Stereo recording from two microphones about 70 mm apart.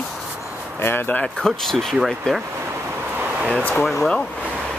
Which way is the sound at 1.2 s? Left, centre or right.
Centre.